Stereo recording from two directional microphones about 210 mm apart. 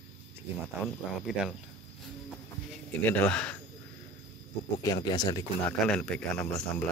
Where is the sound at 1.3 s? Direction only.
5° right (ahead or behind).